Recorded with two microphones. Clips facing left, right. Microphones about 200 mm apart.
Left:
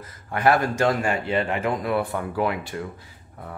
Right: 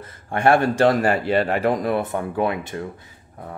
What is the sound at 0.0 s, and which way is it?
A man's voice, 30° right (ahead or behind).